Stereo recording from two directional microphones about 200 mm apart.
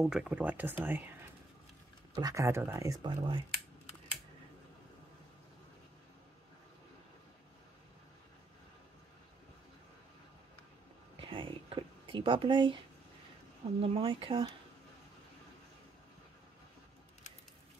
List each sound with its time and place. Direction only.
0.0 s speech: 5° right (ahead or behind)
2.1 s speech: 15° right (ahead or behind)
11.1 s a sound: 25° right (ahead or behind)
13.7 s speech: 30° right (ahead or behind)